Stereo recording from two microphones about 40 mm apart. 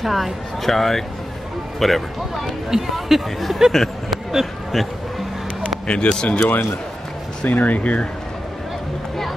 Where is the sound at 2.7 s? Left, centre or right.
Centre.